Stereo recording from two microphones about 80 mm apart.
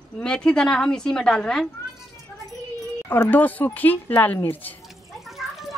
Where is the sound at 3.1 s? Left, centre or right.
Left.